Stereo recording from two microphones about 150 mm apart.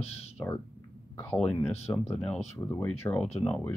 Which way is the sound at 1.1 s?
15° left (ahead or behind).